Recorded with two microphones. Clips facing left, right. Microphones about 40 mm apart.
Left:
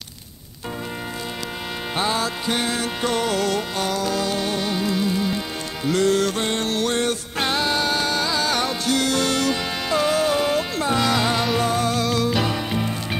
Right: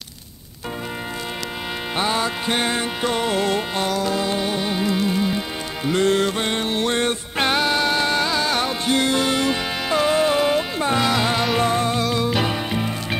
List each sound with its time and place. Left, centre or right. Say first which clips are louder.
2.0 s music: right 1 dB; centre
3.0 s music: even; centre
5.9 s music: right 1 dB; right
8.8 s music: right 2 dB; right
11.6 s music: right 1 dB; right